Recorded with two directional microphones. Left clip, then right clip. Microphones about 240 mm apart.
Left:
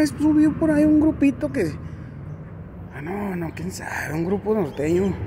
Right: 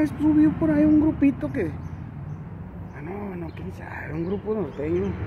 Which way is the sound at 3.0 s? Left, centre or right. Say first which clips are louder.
Left 6 dB; centre.